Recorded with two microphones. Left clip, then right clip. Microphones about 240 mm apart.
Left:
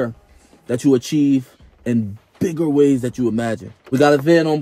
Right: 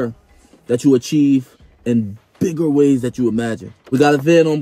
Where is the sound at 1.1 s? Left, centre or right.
Left.